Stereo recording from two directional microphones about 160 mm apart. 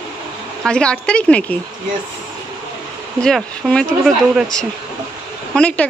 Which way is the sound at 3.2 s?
5° left (ahead or behind).